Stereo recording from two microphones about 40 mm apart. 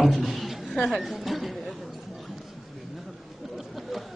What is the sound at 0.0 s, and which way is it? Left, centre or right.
A woman's voice, centre.